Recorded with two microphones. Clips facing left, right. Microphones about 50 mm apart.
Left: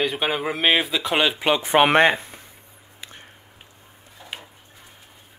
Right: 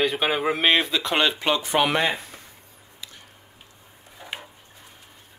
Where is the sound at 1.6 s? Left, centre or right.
Left.